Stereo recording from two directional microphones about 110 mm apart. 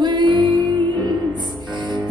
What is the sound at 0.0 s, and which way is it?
Music, 45° right (ahead or behind).